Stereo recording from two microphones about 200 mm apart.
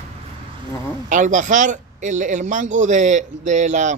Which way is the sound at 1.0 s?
40° right (ahead or behind).